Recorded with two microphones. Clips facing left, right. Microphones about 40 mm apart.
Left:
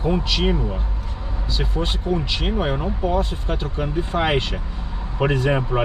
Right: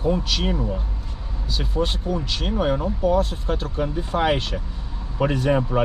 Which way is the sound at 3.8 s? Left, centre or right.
Left.